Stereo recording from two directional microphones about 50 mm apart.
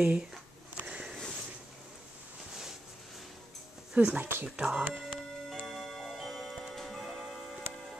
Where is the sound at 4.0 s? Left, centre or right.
Right.